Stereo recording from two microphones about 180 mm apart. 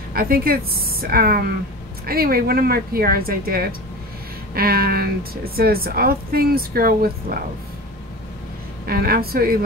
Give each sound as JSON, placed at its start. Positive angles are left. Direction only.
{"t": 0.1, "sound": "a woman's voice", "side_deg": -55}
{"t": 8.8, "sound": "a woman's voice", "side_deg": -55}